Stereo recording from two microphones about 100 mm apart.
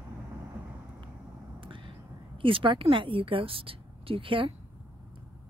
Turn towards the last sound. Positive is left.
turn(degrees=-60)  # may be behind; listen again after turning